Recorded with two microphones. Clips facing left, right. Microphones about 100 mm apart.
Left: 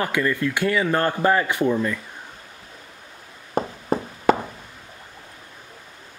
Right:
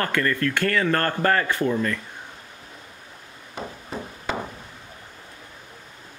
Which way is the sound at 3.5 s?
45° left (ahead or behind).